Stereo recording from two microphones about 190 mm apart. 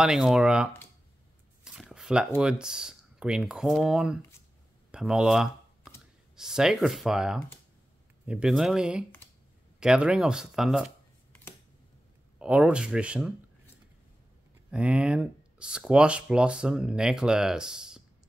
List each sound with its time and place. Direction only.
0.0 s speech: centre (ahead or behind)
12.4 s speech: 5° right (ahead or behind)
14.7 s speech: 5° right (ahead or behind)